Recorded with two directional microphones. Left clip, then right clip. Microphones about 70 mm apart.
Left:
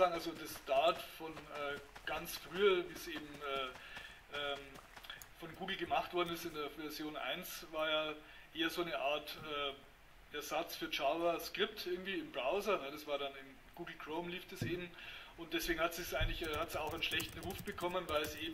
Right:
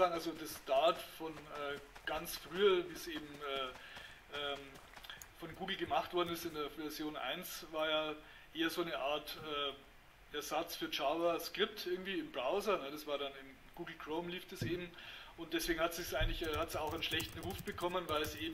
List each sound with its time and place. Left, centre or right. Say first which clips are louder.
0.0 s a man's voice: even; right
5.0 s a man's voice: right 1 dB; right